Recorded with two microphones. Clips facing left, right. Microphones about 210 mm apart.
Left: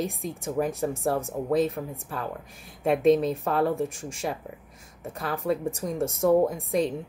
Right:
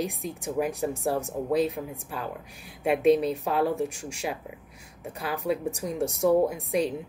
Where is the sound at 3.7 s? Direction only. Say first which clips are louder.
Left 1 dB; 50° left (ahead or behind).